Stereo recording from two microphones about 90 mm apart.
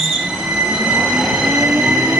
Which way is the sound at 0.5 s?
15° right (ahead or behind).